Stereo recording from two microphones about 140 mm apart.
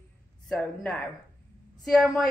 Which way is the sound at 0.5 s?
Centre (ahead or behind).